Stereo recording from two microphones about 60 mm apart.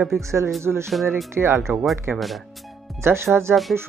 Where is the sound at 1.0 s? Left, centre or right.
Right.